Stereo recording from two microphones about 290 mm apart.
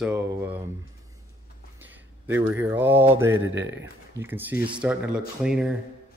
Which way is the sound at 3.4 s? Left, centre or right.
Right.